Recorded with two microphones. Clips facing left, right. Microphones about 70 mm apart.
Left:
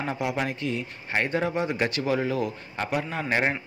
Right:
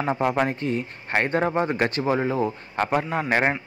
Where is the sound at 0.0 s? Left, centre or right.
Right.